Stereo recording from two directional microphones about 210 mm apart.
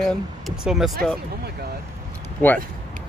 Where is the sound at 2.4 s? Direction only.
10° left (ahead or behind).